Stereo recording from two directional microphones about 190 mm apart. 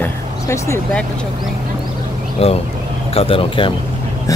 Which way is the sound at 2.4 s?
30° left (ahead or behind).